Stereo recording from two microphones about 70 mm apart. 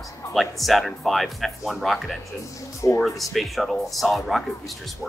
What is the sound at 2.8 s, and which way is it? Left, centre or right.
Speech, left.